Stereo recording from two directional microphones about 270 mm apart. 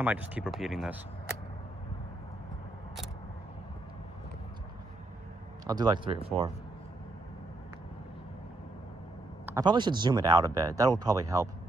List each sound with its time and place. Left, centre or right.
0.0 s speech: centre
5.7 s speech: centre
9.5 s speech: centre